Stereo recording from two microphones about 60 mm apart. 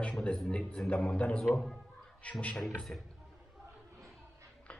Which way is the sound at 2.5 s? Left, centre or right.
Centre.